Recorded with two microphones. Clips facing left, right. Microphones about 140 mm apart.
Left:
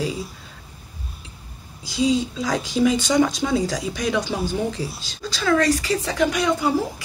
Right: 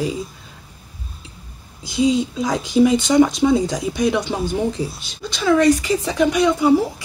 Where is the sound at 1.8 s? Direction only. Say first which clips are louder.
Right 3 dB; 20° right (ahead or behind).